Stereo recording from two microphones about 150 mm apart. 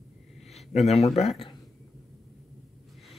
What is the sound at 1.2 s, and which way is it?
Speech, 40° left (ahead or behind).